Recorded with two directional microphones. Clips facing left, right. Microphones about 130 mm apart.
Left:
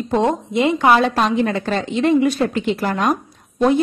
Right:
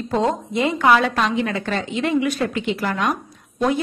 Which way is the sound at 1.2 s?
40° left (ahead or behind).